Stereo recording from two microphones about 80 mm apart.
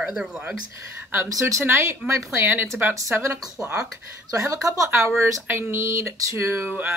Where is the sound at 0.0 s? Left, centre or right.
Centre.